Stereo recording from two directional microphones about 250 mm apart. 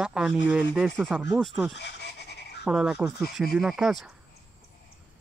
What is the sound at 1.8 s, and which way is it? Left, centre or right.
Goat, left.